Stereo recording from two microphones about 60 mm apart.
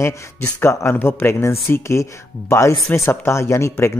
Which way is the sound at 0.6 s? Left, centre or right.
Left.